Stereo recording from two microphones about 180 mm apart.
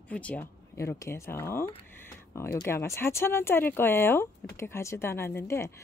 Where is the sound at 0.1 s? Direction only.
10° left (ahead or behind).